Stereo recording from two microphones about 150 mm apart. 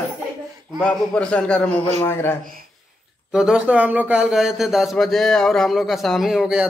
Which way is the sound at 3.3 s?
5° right (ahead or behind).